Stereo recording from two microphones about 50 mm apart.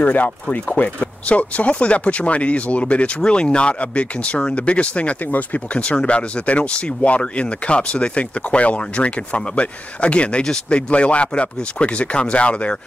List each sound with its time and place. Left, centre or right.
0.0 s speech: left
5.8 s speech: left